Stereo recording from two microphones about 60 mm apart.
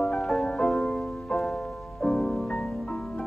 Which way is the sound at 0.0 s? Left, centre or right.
Centre.